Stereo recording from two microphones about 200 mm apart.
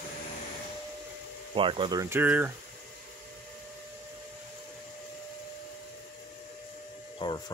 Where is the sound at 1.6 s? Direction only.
25° right (ahead or behind); by 2.5 s 10° right (ahead or behind).